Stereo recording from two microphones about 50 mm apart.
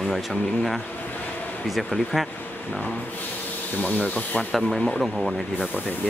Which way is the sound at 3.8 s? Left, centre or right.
Left.